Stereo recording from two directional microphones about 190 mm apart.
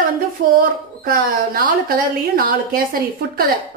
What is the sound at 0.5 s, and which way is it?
Speech, 50° right (ahead or behind).